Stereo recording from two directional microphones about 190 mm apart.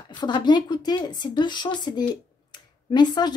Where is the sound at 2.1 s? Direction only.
20° left (ahead or behind).